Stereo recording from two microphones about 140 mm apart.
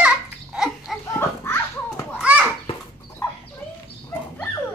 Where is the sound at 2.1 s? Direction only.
10° right (ahead or behind).